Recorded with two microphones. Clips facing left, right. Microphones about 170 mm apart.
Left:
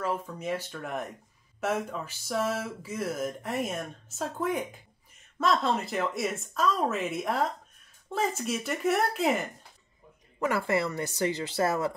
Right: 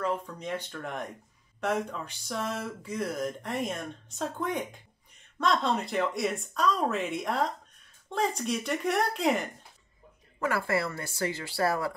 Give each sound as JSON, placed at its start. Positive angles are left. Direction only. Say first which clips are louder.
{"t": 0.0, "sound": "speech", "louder": "even", "side_deg": 5}
{"t": 10.4, "sound": "speech", "louder": "left 2 dB", "side_deg": 20}